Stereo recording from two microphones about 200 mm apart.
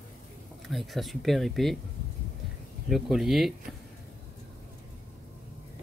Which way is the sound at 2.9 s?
Centre (ahead or behind).